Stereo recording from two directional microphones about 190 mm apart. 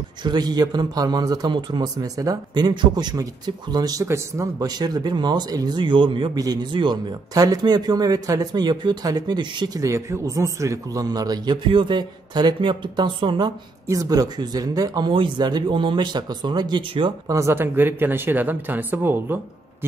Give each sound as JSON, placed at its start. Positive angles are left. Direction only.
{"t": 0.2, "sound": "a man's voice", "side_deg": -20}